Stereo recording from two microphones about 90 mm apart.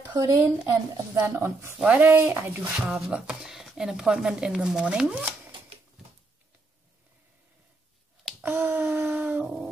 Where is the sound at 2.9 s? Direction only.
10° right (ahead or behind).